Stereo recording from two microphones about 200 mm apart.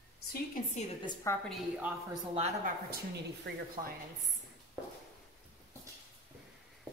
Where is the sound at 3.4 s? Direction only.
55° right (ahead or behind).